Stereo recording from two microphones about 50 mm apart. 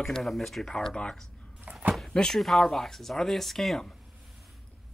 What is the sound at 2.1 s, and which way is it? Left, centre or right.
Speech, centre.